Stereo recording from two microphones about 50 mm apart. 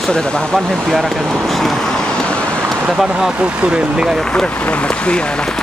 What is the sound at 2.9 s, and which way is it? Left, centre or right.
Speech, centre.